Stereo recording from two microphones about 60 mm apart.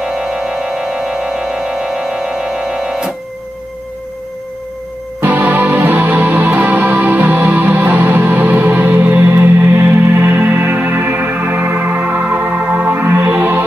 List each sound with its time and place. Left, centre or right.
0.0 s music: centre
5.2 s music: right